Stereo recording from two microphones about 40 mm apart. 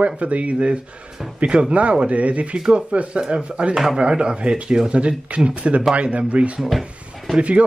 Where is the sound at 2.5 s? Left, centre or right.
Right.